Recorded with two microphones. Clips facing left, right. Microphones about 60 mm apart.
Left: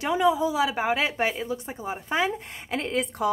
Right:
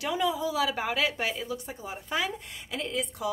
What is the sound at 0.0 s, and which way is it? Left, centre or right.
A woman's voice, left.